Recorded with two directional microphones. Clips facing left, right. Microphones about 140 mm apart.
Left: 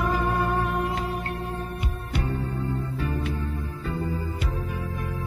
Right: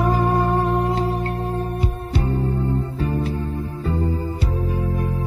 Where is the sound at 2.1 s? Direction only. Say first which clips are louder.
Right 6 dB; 25° right (ahead or behind).